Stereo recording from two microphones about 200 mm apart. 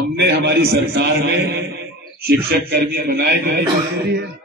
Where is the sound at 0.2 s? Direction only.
55° right (ahead or behind).